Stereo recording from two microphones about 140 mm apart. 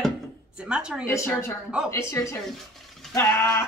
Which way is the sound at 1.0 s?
20° left (ahead or behind).